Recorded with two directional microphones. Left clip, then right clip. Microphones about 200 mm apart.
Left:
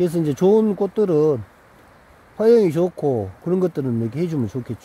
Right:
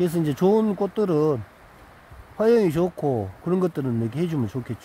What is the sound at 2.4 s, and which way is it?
Speech, 30° left (ahead or behind).